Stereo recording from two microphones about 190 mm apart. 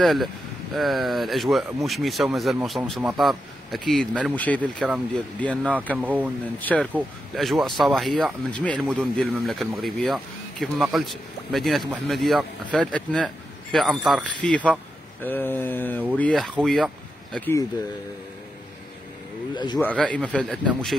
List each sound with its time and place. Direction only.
0.0 s speech: centre (ahead or behind)
5.4 s a sound: 5° left (ahead or behind)
5.9 s speech: 10° right (ahead or behind)
6.6 s a sound: 10° left (ahead or behind)
6.9 s speech: centre (ahead or behind)
15.2 s a sound: 10° left (ahead or behind)
16.2 s speech: 5° left (ahead or behind)
19.5 s speech: 20° left (ahead or behind)
19.8 s speech: 5° left (ahead or behind)